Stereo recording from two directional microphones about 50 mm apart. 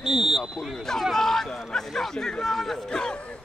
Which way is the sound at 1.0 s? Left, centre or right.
Centre.